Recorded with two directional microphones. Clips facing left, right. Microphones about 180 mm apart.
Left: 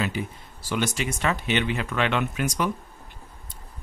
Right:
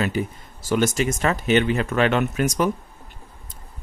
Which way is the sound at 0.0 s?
45° right (ahead or behind).